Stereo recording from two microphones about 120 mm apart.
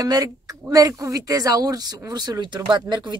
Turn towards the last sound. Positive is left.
turn(degrees=-35)  # may be behind; listen again after turning